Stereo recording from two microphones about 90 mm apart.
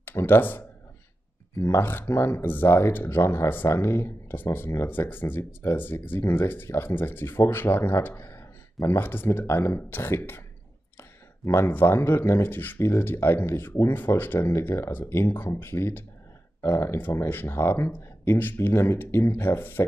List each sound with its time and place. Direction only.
0.0 s speech: 25° left (ahead or behind)